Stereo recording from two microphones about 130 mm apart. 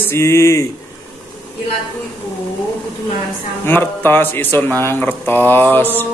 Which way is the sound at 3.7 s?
15° left (ahead or behind).